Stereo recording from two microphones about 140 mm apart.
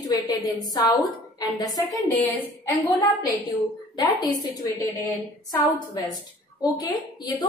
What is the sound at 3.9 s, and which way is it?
Speech, 30° left (ahead or behind).